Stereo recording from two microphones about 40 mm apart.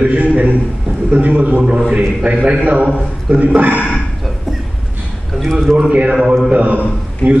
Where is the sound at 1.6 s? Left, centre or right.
Right.